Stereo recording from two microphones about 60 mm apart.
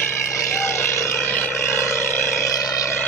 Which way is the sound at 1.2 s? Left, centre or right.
Left.